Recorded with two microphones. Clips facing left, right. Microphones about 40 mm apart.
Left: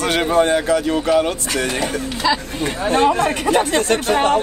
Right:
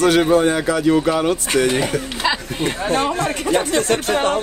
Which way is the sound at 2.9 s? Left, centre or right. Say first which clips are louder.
Left 6 dB; left.